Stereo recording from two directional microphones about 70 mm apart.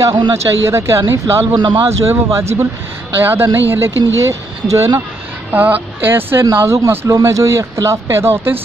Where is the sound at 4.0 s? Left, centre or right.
Right.